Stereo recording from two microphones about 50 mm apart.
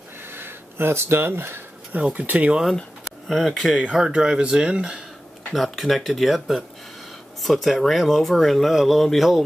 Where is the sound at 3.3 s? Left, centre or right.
Centre.